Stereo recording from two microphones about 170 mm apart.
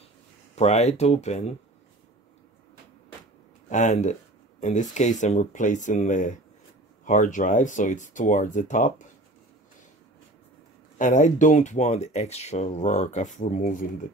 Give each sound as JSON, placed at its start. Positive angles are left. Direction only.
{"t": 0.6, "sound": "speech", "side_deg": 40}
{"t": 3.6, "sound": "speech", "side_deg": 45}
{"t": 11.0, "sound": "speech", "side_deg": 45}